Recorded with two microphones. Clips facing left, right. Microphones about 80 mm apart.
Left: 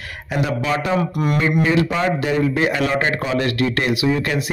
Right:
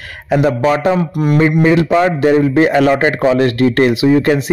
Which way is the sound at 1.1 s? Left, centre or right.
Centre.